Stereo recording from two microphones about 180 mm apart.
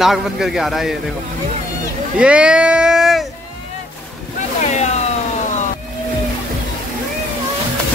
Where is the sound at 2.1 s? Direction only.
5° right (ahead or behind).